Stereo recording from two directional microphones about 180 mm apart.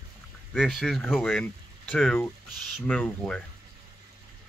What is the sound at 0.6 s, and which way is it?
Speech, centre (ahead or behind).